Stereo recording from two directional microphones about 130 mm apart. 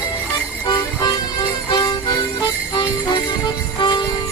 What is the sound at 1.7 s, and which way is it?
Music, 35° left (ahead or behind).